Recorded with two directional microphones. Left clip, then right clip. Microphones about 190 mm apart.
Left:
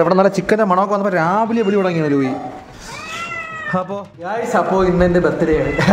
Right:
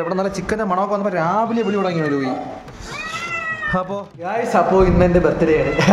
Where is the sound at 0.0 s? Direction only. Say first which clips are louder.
Left 8 dB; 35° left (ahead or behind).